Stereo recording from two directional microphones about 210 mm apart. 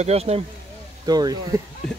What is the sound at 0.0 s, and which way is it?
Speech, 30° right (ahead or behind).